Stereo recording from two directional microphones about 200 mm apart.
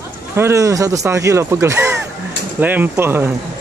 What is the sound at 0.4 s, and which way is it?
Speech, 15° right (ahead or behind).